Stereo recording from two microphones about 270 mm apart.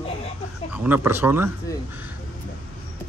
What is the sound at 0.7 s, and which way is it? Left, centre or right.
Speech, centre.